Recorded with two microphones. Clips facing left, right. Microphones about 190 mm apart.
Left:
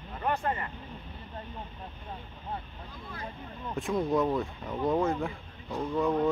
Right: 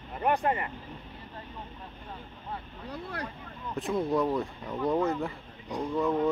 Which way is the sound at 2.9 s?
75° right (ahead or behind).